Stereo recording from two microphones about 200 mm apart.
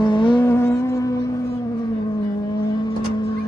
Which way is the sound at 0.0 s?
25° left (ahead or behind).